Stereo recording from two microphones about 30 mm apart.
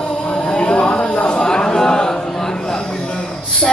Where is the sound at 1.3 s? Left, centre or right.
Left.